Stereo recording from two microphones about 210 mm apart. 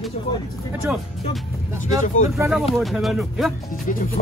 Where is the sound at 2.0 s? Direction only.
35° left (ahead or behind).